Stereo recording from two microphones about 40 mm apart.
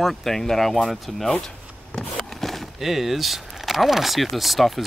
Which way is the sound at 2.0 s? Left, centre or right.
Centre.